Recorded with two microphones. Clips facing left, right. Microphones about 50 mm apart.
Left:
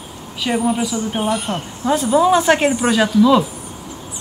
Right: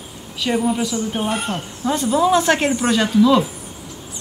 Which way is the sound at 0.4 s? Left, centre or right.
Centre.